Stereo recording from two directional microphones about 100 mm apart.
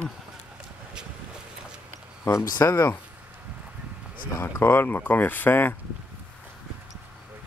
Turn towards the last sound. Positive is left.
turn(degrees=20)  # may be behind; listen again after turning